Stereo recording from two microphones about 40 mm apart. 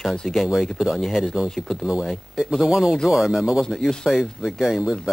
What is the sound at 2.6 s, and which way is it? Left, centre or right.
Speech, centre.